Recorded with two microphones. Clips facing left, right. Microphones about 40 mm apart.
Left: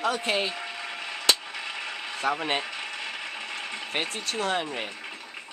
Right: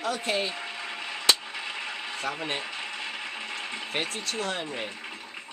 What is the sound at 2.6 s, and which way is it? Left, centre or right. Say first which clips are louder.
Mechanisms: left 1 dB; centre.